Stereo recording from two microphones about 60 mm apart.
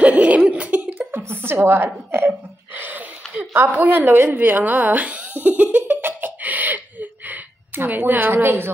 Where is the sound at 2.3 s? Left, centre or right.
Right.